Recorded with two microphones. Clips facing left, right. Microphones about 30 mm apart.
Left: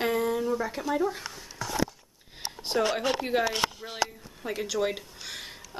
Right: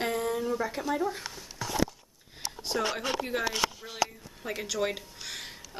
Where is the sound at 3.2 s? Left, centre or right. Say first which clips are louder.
Left 4 dB; left.